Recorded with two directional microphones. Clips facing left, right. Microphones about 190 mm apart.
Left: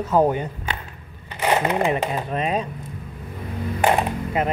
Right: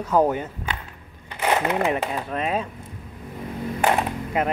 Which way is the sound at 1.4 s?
10° left (ahead or behind).